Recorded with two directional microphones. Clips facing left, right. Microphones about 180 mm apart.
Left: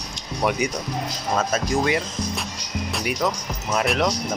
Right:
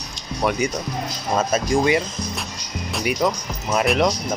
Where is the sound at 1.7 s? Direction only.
5° right (ahead or behind).